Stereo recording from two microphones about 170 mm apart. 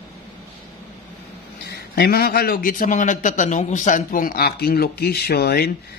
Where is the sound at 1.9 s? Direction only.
65° left (ahead or behind).